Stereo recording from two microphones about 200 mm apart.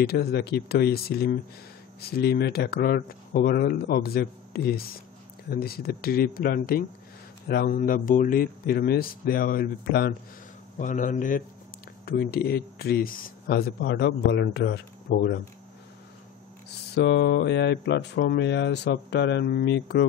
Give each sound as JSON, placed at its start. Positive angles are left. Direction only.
{"t": 0.0, "sound": "speech", "side_deg": 50}
{"t": 10.8, "sound": "speech", "side_deg": 40}
{"t": 16.9, "sound": "speech", "side_deg": 55}